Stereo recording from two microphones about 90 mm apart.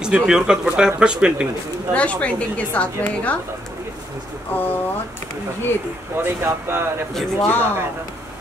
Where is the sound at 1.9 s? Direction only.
15° left (ahead or behind).